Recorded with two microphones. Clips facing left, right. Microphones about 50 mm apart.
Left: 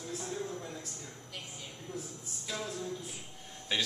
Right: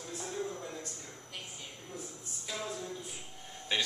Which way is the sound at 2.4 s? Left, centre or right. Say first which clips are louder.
Left 1 dB; centre.